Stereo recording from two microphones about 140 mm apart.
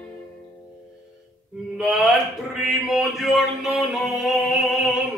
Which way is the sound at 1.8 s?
Centre (ahead or behind).